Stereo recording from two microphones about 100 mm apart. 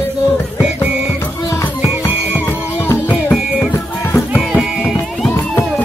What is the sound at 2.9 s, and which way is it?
Music, 20° left (ahead or behind).